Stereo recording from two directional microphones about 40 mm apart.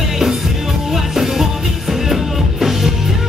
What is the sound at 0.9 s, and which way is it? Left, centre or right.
Music, centre.